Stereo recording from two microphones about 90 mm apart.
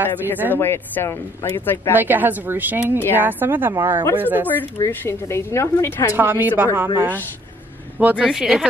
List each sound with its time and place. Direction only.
0.0 s a woman's voice: 20° right (ahead or behind)
0.6 s speech: 25° left (ahead or behind)
2.0 s a woman's voice: 20° right (ahead or behind)
4.5 s a woman's voice: 20° left (ahead or behind)
6.1 s a woman's voice: 25° right (ahead or behind)
8.0 s a woman's voice: 20° right (ahead or behind)
8.3 s speech: 5° right (ahead or behind)